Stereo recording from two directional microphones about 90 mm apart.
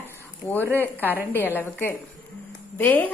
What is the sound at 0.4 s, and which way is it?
A woman's voice, 20° left (ahead or behind).